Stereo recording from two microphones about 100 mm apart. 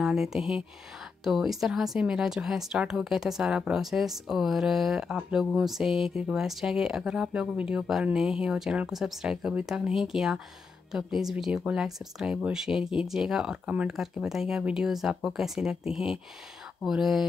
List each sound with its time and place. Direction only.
0.0 s speech: 5° right (ahead or behind)